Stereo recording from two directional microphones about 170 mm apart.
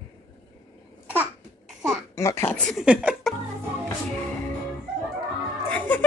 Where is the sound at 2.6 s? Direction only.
Centre (ahead or behind).